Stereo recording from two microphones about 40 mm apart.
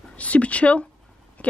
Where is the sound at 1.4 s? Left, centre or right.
Left.